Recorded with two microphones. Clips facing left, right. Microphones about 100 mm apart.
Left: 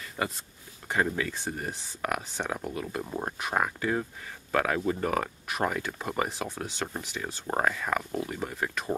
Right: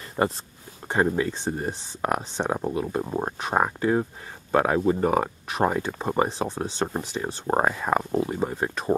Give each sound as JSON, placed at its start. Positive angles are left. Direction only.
{"t": 0.2, "sound": "speech", "side_deg": -35}